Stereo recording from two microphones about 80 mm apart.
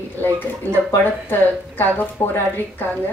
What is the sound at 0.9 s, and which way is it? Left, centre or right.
Speech, left.